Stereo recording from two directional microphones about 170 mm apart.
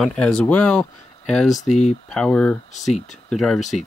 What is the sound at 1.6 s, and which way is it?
Speech, 45° left (ahead or behind).